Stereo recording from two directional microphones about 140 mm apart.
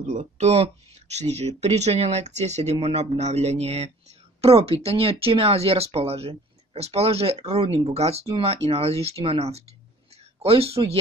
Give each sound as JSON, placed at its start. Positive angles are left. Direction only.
{"t": 0.0, "sound": "speech", "side_deg": -65}